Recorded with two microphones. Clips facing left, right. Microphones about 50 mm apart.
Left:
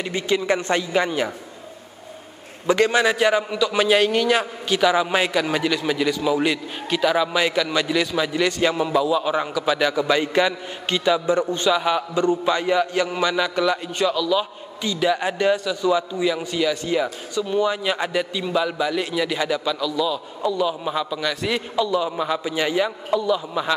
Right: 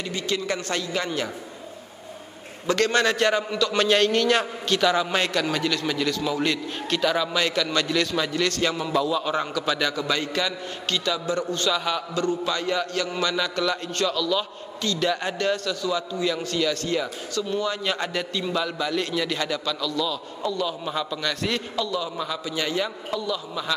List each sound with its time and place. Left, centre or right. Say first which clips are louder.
0.0 s a man's voice: left 5 dB; left
2.6 s a man's voice: left 3 dB; centre